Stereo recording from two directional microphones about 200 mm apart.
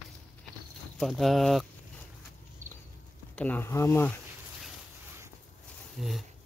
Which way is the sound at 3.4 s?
10° left (ahead or behind).